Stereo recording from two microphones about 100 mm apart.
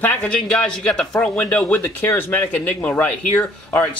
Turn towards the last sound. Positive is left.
turn(degrees=15)  # may be behind; listen again after turning